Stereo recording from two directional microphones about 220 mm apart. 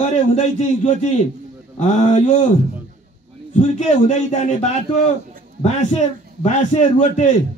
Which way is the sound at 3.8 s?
35° left (ahead or behind).